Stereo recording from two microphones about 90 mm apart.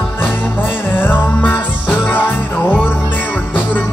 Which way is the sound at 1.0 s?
20° left (ahead or behind).